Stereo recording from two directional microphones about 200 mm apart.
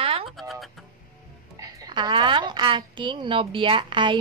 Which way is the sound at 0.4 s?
Centre (ahead or behind).